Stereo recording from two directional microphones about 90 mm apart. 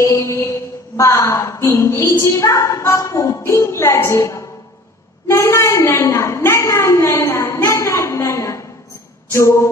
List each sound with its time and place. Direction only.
0.0 s a woman's voice: 35° left (ahead or behind)